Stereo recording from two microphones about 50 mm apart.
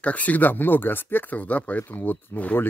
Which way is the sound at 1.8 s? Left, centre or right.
Left.